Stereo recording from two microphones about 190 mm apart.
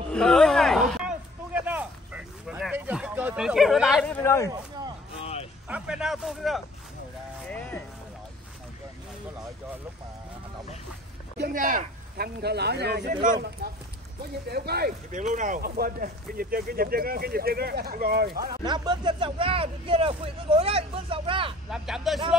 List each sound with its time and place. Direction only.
0.1 s a sound: 5° left (ahead or behind)
4.2 s speech: 15° left (ahead or behind)
5.2 s vehicle: 30° left (ahead or behind)
5.7 s a man's voice: 5° right (ahead or behind)
11.3 s speech: 50° right (ahead or behind)
13.0 s speech: 45° right (ahead or behind)
14.5 s speech: 55° right (ahead or behind)
18.5 s speech: 20° right (ahead or behind)
21.6 s a man's voice: 5° right (ahead or behind)